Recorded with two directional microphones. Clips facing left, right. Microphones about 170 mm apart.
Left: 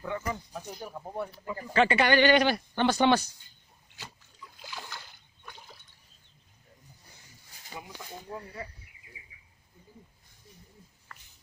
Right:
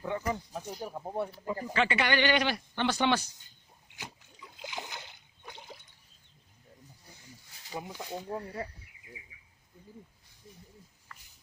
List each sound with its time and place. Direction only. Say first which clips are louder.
0.0 s speech: right 1 dB; 25° right (ahead or behind)
1.7 s speech: left 6 dB; 40° left (ahead or behind)
3.9 s splash: right 2 dB; 15° right (ahead or behind)
7.7 s speech: right 5 dB; 40° right (ahead or behind)
11.1 s a sound: left 2 dB; 50° left (ahead or behind)